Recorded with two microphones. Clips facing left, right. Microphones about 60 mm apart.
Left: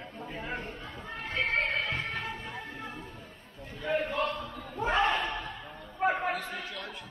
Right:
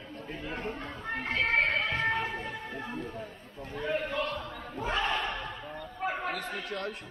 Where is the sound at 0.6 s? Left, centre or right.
Right.